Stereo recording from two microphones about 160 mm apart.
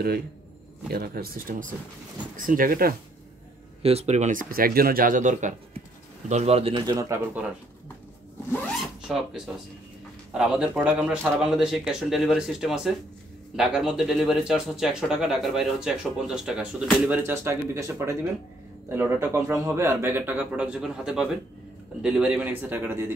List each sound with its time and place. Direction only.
0.8 s speech: 70° right (ahead or behind)
3.8 s speech: 40° right (ahead or behind)
7.0 s speech: 15° right (ahead or behind)
9.0 s speech: 5° right (ahead or behind)
17.2 s speech: 15° right (ahead or behind)